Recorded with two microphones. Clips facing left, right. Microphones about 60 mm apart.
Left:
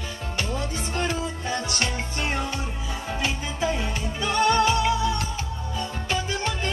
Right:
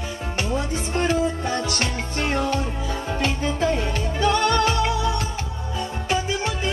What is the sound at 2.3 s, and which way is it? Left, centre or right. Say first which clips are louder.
Music: right 8 dB; centre.